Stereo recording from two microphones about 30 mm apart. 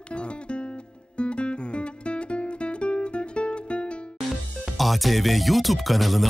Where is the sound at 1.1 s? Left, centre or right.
Left.